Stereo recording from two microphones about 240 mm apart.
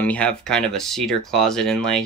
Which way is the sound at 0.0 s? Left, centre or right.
Centre.